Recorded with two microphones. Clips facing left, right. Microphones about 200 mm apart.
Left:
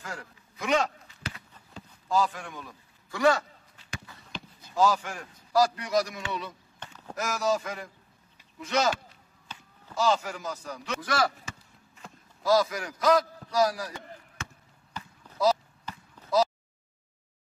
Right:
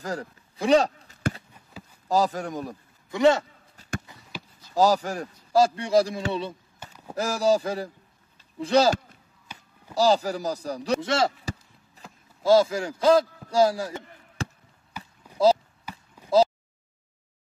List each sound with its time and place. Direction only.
0.0 s a man's voice: 35° right (ahead or behind)
3.1 s a man's voice: 25° right (ahead or behind)
4.1 s a sound: 20° right (ahead or behind)
4.7 s a man's voice: 35° right (ahead or behind)
6.8 s a sound: 10° right (ahead or behind)
7.2 s a man's voice: 30° right (ahead or behind)
9.5 s a sound: 10° right (ahead or behind)
9.9 s a man's voice: 35° right (ahead or behind)
15.0 s run: 10° right (ahead or behind)